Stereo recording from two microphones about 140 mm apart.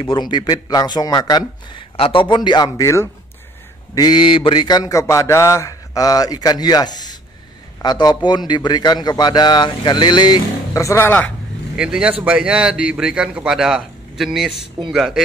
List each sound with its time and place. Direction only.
0.0 s a man's voice: 35° left (ahead or behind)
3.9 s mantra: 30° left (ahead or behind)
7.8 s a man's voice: 30° left (ahead or behind); by 11.3 s 10° left (ahead or behind)
11.7 s a man's voice: 5° right (ahead or behind)